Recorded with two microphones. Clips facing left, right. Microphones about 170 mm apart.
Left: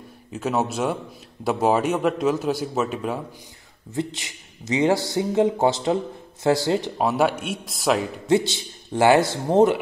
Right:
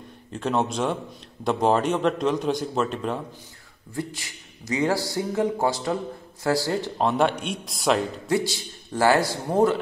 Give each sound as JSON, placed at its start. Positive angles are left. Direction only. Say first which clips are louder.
{"t": 0.3, "sound": "a man's voice", "louder": "left 1 dB", "side_deg": 5}
{"t": 3.9, "sound": "speech", "louder": "left 4 dB", "side_deg": 20}
{"t": 7.0, "sound": "a man's voice", "louder": "left 1 dB", "side_deg": 5}
{"t": 8.3, "sound": "speech", "louder": "left 6 dB", "side_deg": 25}